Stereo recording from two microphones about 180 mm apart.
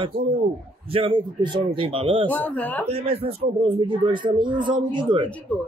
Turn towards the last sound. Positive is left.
turn(degrees=-30)  # may be behind; listen again after turning